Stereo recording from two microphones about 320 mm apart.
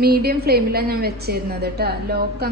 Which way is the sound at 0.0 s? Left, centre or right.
Right.